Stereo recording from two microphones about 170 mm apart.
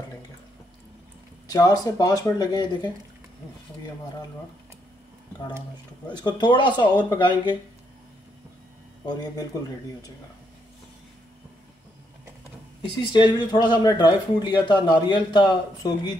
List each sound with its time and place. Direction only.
1.5 s speech: 25° left (ahead or behind)
6.0 s speech: 25° left (ahead or behind)
9.0 s speech: 25° left (ahead or behind)
12.8 s speech: 25° left (ahead or behind)